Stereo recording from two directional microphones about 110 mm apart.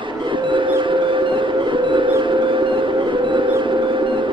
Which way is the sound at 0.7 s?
45° right (ahead or behind).